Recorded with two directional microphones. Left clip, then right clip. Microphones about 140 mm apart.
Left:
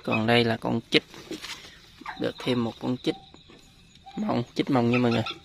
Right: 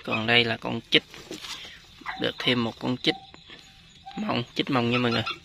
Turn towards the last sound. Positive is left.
turn(degrees=25)  # may be behind; listen again after turning